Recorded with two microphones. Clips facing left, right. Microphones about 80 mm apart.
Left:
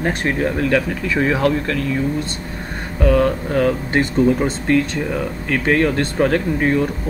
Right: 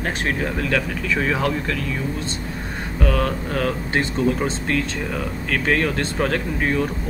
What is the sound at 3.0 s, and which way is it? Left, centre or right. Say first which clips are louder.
Speech: left 7 dB; centre.